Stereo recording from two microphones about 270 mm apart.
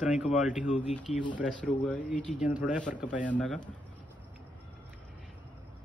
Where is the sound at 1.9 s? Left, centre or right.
Centre.